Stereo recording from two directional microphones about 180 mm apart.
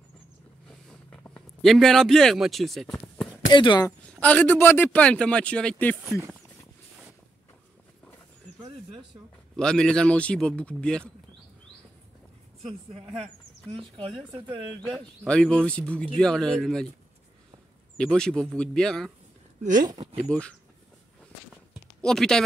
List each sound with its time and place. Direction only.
0.7 s a sound: 5° left (ahead or behind)
3.5 s speech: 25° left (ahead or behind)
4.2 s a man's voice: 10° left (ahead or behind)
9.6 s speech: 5° left (ahead or behind)
12.6 s speech: 35° right (ahead or behind)
14.8 s speech: 5° left (ahead or behind)
17.9 s speech: 5° left (ahead or behind)
19.6 s speech: 45° right (ahead or behind)
20.0 s a sound: 35° right (ahead or behind)
20.2 s a man's voice: 5° left (ahead or behind)
22.0 s speech: 5° left (ahead or behind)